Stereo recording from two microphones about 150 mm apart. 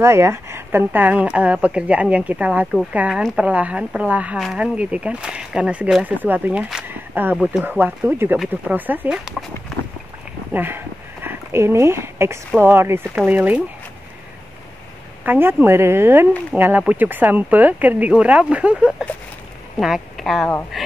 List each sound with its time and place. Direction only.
0.0 s speech: 20° right (ahead or behind)
10.5 s speech: 15° right (ahead or behind)
15.2 s speech: 15° right (ahead or behind)